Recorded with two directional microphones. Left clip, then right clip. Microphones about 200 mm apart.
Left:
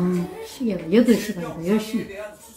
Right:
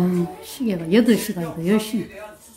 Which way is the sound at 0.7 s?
60° right (ahead or behind).